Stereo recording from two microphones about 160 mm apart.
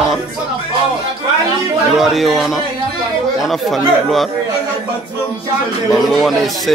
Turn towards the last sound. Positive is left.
turn(degrees=0)  # may be behind; listen again after turning